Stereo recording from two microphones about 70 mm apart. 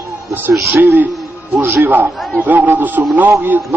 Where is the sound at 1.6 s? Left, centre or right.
Right.